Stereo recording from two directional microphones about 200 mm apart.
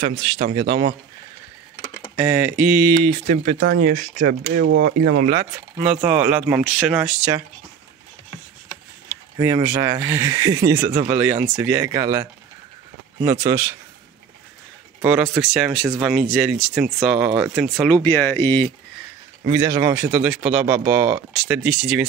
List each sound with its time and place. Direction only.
0.1 s speech: 30° right (ahead or behind)
2.1 s speech: 10° right (ahead or behind)
3.0 s speech: 30° right (ahead or behind)
3.5 s speech: 50° right (ahead or behind)
4.6 s speech: 65° right (ahead or behind)
6.0 s speech: 5° right (ahead or behind)
9.4 s speech: 10° right (ahead or behind)
15.0 s speech: 5° right (ahead or behind); by 18.7 s 10° left (ahead or behind)
19.4 s speech: 15° right (ahead or behind)